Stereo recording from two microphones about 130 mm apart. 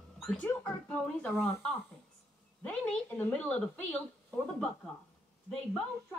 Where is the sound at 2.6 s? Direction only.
10° left (ahead or behind).